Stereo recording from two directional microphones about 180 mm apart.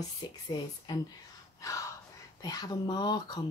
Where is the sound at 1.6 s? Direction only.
15° left (ahead or behind).